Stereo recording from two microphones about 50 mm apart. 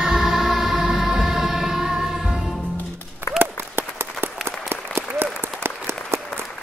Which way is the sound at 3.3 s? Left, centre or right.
Right.